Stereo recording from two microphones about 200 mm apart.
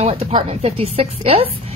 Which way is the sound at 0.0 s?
30° right (ahead or behind).